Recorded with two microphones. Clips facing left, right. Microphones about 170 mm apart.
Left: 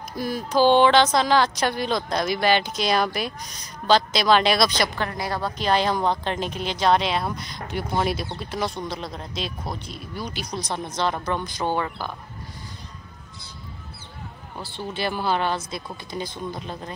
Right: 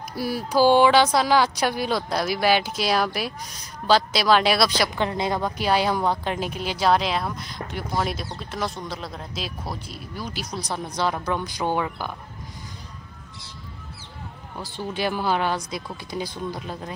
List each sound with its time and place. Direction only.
0.1 s a woman's voice: 10° right (ahead or behind)
4.9 s a woman's voice: 20° right (ahead or behind)
15.0 s speech: 10° right (ahead or behind)